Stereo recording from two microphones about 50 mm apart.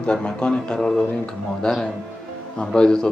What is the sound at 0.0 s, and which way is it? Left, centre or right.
Speech, left.